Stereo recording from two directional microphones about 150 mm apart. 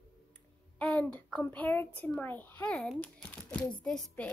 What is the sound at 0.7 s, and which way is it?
A child's voice, 10° left (ahead or behind).